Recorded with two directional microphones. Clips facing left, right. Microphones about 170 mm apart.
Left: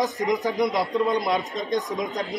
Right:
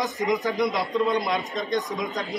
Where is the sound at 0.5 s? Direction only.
Centre (ahead or behind).